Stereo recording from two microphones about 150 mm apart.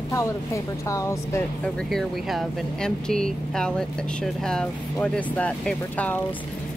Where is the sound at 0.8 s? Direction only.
20° left (ahead or behind).